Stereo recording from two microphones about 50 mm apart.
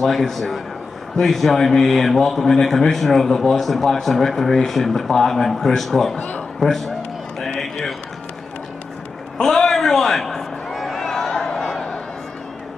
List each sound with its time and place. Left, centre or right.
0.0 s a man's voice: centre
6.1 s a man's voice: left
6.6 s a man's voice: centre
9.4 s a sound: centre